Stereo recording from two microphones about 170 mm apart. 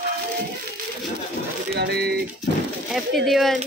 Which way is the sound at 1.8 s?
70° right (ahead or behind).